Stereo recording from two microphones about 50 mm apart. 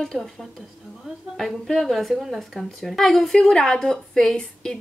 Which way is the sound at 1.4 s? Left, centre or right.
Centre.